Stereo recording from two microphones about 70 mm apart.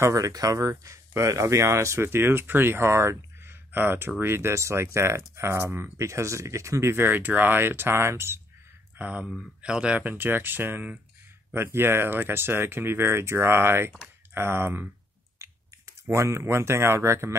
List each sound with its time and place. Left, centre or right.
0.0 s speech: right
3.7 s speech: right
5.9 s speech: right
8.9 s speech: right
15.3 s speech: right